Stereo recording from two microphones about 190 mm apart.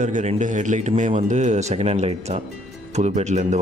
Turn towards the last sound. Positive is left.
turn(degrees=-35)  # may be behind; listen again after turning